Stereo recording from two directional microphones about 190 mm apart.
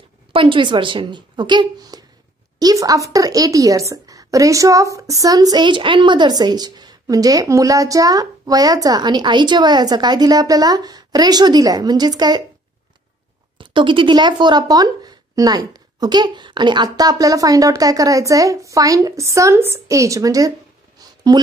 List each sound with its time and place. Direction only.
0.3 s a woman's voice: 25° right (ahead or behind)
13.6 s a woman's voice: 25° right (ahead or behind)
21.0 s a sound: 20° right (ahead or behind)